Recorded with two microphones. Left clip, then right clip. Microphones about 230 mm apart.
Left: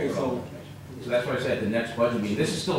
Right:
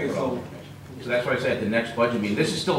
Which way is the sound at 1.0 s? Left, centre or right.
Centre.